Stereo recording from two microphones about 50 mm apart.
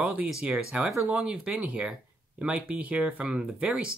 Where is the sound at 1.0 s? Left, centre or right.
Right.